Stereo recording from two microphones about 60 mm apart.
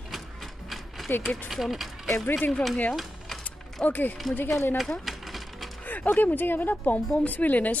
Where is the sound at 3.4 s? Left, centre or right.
Left.